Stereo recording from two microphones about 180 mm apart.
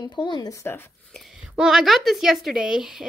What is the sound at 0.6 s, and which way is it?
Speech, 10° left (ahead or behind).